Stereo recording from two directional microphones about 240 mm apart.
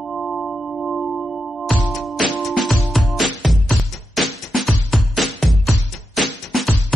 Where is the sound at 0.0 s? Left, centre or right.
Centre.